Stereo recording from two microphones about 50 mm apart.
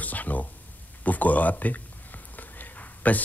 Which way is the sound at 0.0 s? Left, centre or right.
Left.